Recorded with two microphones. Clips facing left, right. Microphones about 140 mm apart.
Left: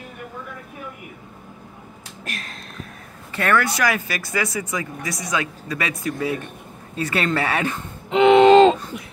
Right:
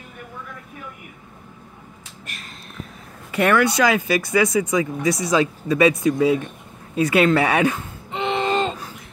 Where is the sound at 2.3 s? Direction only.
90° left.